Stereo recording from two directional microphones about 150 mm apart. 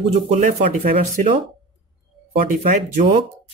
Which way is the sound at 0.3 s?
50° right (ahead or behind).